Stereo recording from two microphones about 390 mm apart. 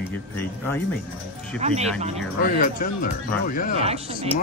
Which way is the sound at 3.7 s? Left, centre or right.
Centre.